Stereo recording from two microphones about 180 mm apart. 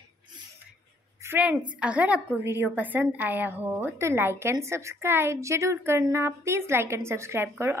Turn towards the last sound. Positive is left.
turn(degrees=-15)  # may be behind; listen again after turning